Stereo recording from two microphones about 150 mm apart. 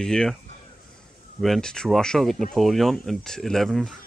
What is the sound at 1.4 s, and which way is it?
Speech, 5° left (ahead or behind).